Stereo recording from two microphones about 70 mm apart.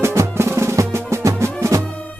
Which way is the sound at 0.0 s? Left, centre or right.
Right.